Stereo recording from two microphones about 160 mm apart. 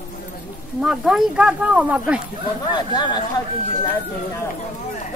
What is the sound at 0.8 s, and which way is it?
Speech, 5° right (ahead or behind).